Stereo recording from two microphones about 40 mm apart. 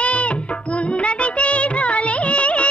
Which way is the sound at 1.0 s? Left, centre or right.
Left.